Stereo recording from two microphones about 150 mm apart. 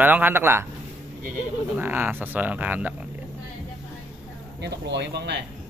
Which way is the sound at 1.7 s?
15° right (ahead or behind).